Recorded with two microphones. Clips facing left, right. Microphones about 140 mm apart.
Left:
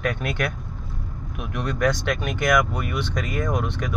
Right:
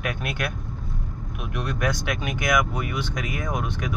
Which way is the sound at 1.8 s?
10° right (ahead or behind).